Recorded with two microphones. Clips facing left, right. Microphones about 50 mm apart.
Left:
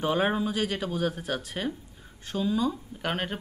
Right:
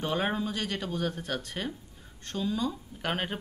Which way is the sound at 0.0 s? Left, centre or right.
Centre.